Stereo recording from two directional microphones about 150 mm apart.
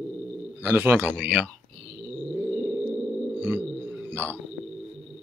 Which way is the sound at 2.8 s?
5° left (ahead or behind).